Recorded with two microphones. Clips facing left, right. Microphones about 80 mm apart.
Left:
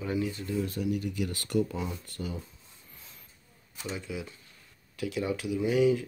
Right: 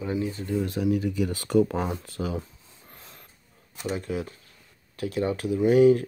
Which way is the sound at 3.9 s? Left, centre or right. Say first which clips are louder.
Right 6 dB; right.